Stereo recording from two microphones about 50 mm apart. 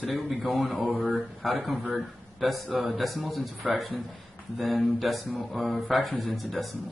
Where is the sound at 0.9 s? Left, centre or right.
Centre.